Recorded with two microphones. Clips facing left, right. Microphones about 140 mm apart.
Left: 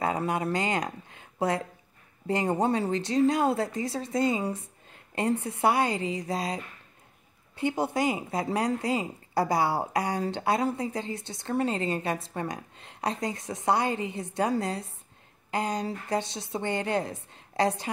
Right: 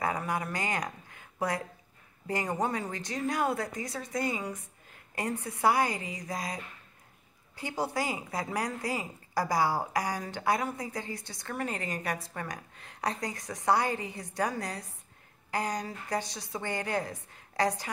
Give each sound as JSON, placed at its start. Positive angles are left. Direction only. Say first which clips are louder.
{"t": 0.0, "sound": "speech", "louder": "left 4 dB", "side_deg": 25}